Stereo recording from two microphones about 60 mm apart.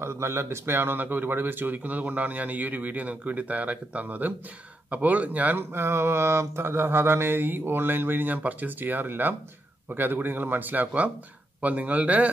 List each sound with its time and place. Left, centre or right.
0.0 s speech: right
5.6 s mantra: right
11.6 s speech: right